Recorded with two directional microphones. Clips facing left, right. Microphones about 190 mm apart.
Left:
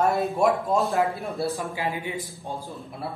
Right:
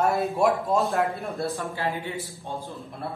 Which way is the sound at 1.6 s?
15° left (ahead or behind).